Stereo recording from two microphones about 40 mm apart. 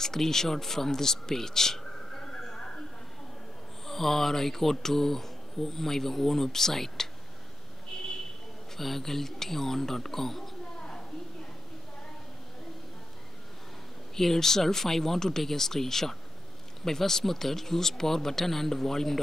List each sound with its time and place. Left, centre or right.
0.0 s a man's voice: centre
3.8 s speech: centre
8.7 s speech: centre
10.8 s a sound: centre
14.1 s speech: centre